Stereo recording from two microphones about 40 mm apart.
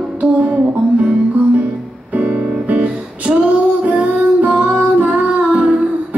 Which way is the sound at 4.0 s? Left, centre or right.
Right.